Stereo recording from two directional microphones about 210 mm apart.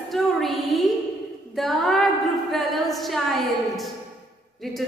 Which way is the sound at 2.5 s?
Centre (ahead or behind).